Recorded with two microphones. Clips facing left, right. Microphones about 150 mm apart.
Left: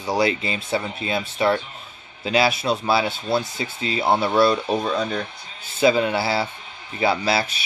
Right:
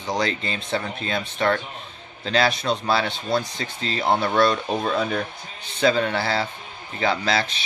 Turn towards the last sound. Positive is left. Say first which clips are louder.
# left 1 dB
turn(degrees=10)  # may be behind; listen again after turning